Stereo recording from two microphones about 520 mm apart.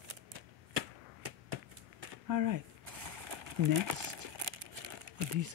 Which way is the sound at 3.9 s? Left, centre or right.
Right.